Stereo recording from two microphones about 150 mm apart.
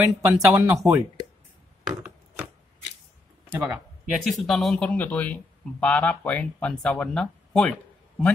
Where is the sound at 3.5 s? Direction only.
15° right (ahead or behind).